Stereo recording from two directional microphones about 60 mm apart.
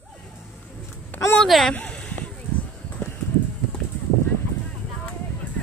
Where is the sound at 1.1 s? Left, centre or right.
Left.